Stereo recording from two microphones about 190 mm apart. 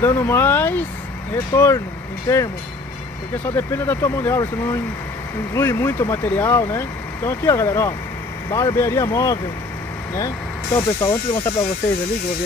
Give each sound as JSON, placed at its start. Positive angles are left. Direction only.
{"t": 0.0, "sound": "speech", "side_deg": 15}
{"t": 5.5, "sound": "speech", "side_deg": 15}